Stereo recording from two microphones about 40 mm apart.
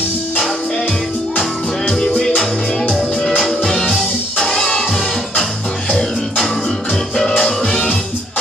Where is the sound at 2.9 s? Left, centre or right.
Centre.